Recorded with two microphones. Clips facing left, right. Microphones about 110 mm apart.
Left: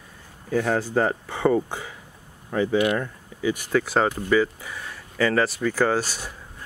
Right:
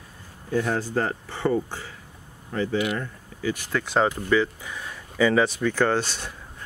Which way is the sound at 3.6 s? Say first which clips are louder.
Left 1 dB; 5° left (ahead or behind).